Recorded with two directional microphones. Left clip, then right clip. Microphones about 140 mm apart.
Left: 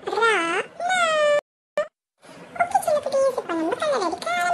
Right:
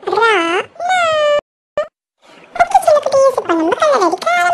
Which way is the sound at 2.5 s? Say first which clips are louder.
Right 11 dB; 60° right (ahead or behind).